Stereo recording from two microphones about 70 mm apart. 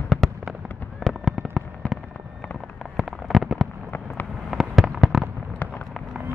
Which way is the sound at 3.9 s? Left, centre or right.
Left.